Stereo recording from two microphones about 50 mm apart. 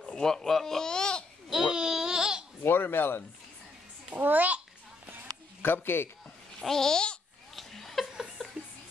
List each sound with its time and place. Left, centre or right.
0.0 s speech: centre
1.5 s babbling: centre
2.6 s speech: left
4.2 s a child's voice: right
5.6 s speech: left
6.6 s babbling: centre
7.5 s chuckle: centre
8.4 s a sound: centre